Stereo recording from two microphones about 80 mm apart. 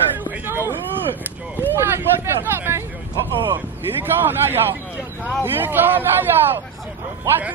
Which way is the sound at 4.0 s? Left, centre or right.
Right.